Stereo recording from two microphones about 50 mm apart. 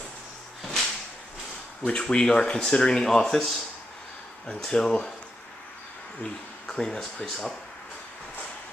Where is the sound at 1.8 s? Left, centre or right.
Centre.